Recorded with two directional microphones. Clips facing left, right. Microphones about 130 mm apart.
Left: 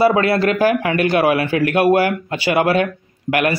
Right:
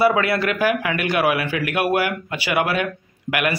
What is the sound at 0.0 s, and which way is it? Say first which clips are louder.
A man's voice: left 4 dB; 30° left (ahead or behind).